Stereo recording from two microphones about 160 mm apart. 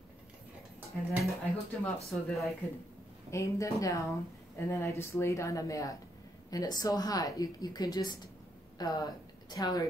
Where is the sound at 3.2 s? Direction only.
20° left (ahead or behind).